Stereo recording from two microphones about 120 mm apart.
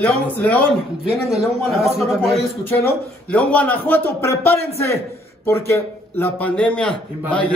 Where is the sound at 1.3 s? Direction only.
Centre (ahead or behind).